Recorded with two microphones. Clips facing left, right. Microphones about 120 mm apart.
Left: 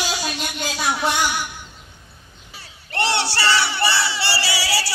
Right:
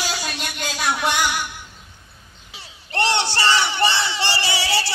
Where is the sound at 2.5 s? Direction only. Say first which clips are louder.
Even; 15° right (ahead or behind).